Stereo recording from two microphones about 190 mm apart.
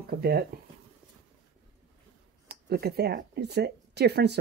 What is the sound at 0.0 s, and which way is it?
Speech, 55° right (ahead or behind).